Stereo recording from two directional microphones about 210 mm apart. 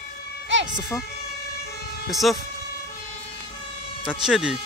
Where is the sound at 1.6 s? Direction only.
50° left (ahead or behind).